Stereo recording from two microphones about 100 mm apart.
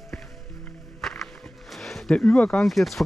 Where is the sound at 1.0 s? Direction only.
Centre (ahead or behind).